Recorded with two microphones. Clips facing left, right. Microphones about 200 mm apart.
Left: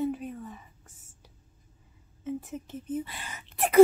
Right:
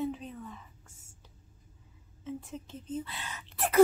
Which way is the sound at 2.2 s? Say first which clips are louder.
Left 5 dB; 15° left (ahead or behind).